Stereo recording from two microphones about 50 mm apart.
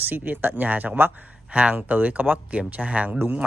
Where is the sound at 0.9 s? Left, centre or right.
Right.